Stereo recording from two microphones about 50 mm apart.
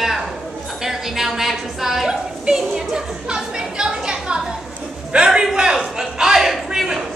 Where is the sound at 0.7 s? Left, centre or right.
Centre.